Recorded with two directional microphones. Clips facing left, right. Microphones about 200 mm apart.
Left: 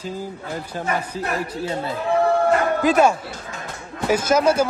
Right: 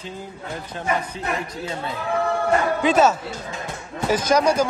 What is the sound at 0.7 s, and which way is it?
Speech, 35° left (ahead or behind).